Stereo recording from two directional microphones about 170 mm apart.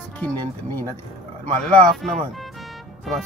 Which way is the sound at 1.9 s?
Centre (ahead or behind).